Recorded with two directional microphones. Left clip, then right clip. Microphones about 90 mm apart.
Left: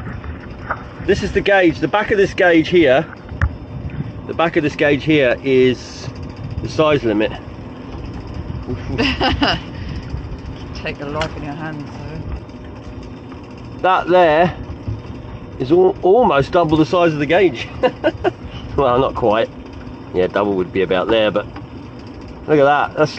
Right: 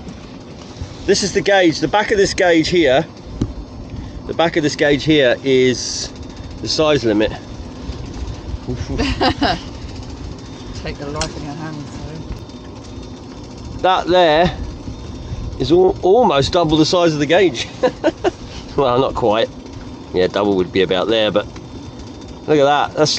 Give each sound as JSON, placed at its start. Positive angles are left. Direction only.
{"t": 1.0, "sound": "speech", "side_deg": -20}
{"t": 4.3, "sound": "speech", "side_deg": -20}
{"t": 8.9, "sound": "speech", "side_deg": 15}
{"t": 13.7, "sound": "speech", "side_deg": -20}
{"t": 15.6, "sound": "speech", "side_deg": -25}
{"t": 22.5, "sound": "speech", "side_deg": -25}